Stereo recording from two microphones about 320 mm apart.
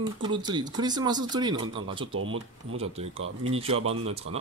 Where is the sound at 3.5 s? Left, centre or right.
Centre.